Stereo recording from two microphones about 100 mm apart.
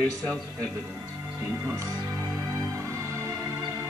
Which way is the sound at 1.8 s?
30° right (ahead or behind).